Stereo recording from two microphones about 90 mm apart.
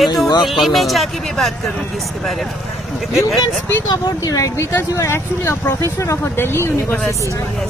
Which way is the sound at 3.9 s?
50° left (ahead or behind).